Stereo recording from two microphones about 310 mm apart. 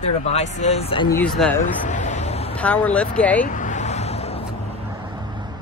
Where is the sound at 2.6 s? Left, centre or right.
Centre.